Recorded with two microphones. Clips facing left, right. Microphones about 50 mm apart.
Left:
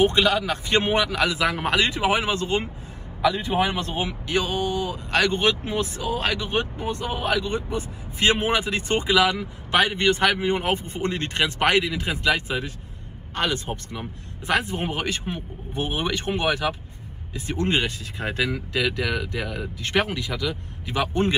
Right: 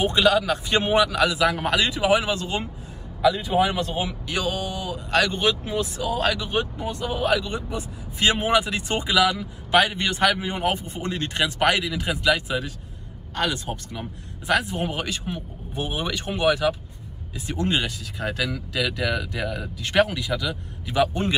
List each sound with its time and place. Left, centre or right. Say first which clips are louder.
0.0 s speech: even; left
19.4 s speech: right 2 dB; centre
19.8 s speech: right 3 dB; left